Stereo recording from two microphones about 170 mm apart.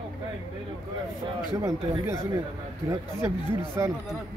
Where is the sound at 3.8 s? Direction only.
15° right (ahead or behind).